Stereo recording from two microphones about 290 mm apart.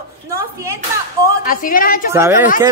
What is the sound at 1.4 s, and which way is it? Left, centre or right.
Speech, left.